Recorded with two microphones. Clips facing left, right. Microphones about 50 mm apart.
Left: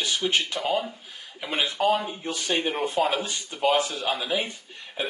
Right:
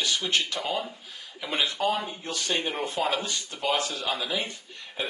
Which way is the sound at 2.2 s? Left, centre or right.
Centre.